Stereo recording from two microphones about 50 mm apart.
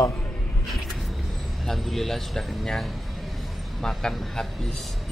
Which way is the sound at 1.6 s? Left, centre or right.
Centre.